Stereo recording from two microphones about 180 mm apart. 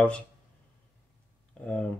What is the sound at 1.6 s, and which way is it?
Speech, 5° left (ahead or behind).